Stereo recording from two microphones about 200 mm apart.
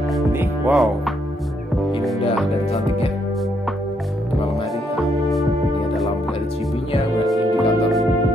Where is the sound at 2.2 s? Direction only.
30° left (ahead or behind).